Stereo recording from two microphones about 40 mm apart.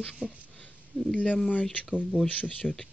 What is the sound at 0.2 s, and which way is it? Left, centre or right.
Speech, right.